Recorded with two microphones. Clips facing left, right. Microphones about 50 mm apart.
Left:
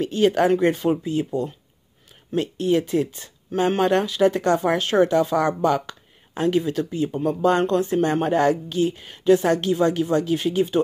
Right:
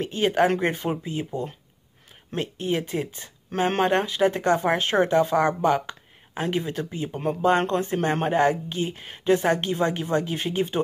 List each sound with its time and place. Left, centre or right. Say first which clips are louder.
0.0 s speech: left 3 dB; right